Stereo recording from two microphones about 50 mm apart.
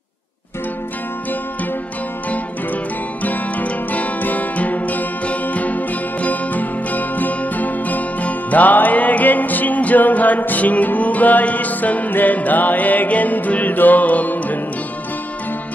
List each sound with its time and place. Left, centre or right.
3.2 s music: left